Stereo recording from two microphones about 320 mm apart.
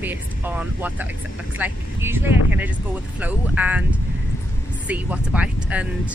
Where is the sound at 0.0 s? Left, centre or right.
Centre.